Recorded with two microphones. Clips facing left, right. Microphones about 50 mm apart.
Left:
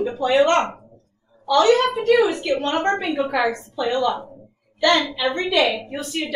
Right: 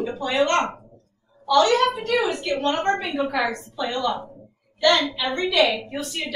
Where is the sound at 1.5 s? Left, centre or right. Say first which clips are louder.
Left 2 dB; centre.